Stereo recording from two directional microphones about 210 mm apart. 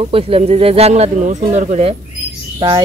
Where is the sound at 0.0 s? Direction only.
25° right (ahead or behind).